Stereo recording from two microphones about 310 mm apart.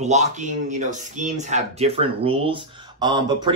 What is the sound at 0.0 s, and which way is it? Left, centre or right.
Speech, right.